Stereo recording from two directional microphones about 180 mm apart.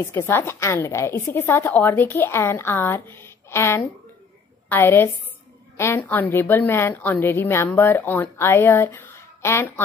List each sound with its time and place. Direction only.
0.0 s a woman's voice: 15° left (ahead or behind)